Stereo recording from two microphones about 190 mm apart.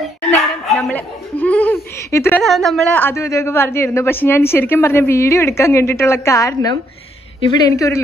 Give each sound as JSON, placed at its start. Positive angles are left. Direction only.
{"t": 0.7, "sound": "laughter", "side_deg": 10}
{"t": 2.4, "sound": "a man's voice", "side_deg": 0}